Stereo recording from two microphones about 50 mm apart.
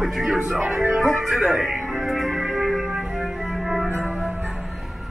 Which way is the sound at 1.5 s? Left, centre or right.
Centre.